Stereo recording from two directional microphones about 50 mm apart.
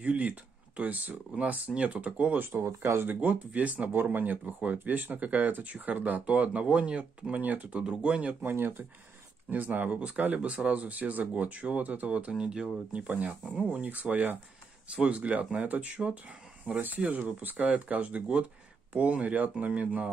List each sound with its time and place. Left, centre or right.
0.0 s speech: right
2.6 s speech: right
3.1 s speech: right
7.8 s speech: right
8.5 s speech: right
9.5 s speech: right; by 12.6 s centre
13.1 s speech: right
17.1 s speech: right
17.6 s speech: right